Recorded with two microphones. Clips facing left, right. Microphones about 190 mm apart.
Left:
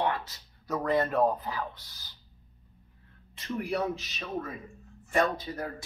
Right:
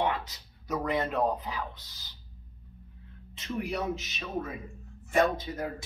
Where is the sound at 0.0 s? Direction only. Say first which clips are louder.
Even; 15° right (ahead or behind).